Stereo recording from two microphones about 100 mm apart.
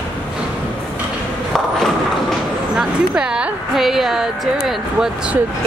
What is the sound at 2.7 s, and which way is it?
A woman's voice, 10° right (ahead or behind).